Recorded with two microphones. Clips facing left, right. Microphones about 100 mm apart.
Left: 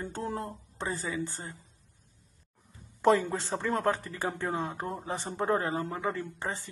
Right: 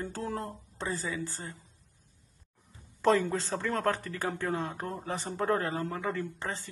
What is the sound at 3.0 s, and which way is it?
A man's voice, 15° left (ahead or behind).